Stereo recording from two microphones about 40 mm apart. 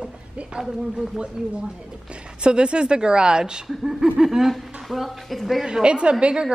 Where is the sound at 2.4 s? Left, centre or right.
Right.